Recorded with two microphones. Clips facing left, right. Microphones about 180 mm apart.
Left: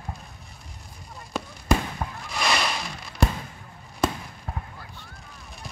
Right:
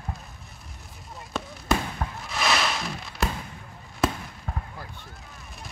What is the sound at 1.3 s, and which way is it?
Fireworks, centre (ahead or behind).